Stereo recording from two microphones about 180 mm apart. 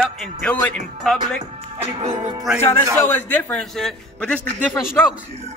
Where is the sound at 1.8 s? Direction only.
25° right (ahead or behind).